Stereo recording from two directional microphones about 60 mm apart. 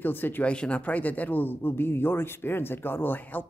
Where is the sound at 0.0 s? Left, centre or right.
Left.